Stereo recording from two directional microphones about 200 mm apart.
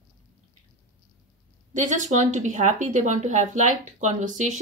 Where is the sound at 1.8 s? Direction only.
40° right (ahead or behind).